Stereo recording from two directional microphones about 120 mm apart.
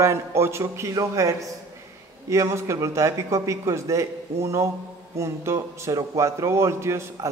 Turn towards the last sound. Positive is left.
turn(degrees=-20)  # may be behind; listen again after turning